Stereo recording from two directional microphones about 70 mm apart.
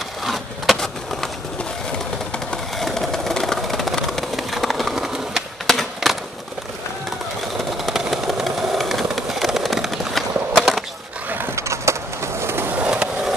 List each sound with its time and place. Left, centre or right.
0.2 s a sound: centre
2.8 s vehicle: centre
7.7 s vehicle: centre
11.5 s skateboard: right
12.8 s skateboard: centre